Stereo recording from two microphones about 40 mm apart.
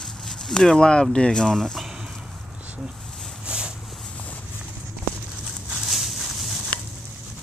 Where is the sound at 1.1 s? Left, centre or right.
Centre.